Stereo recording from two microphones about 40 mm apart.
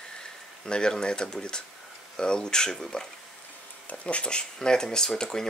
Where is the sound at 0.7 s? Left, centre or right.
Centre.